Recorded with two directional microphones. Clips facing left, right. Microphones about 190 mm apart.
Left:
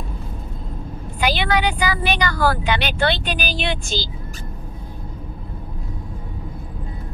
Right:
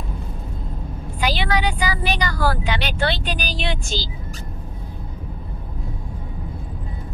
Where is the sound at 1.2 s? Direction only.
60° left (ahead or behind).